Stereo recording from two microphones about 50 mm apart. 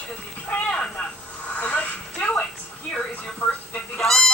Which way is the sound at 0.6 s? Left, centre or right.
Centre.